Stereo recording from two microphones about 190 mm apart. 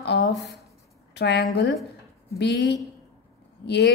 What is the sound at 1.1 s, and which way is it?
A woman's voice, 60° left (ahead or behind).